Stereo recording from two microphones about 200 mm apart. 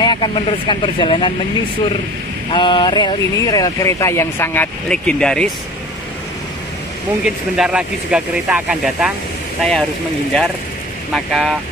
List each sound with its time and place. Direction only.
0.0 s speech: 25° left (ahead or behind)
2.5 s speech: 20° left (ahead or behind); by 5.5 s 5° left (ahead or behind)
7.2 s speech: 5° right (ahead or behind)
11.1 s speech: centre (ahead or behind)